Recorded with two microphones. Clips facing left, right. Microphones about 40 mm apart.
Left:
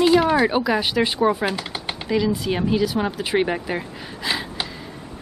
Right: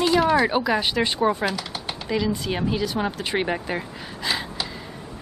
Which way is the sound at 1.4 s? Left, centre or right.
Left.